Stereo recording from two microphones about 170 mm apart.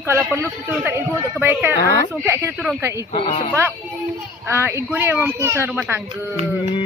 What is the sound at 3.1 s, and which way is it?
Speech, 30° left (ahead or behind).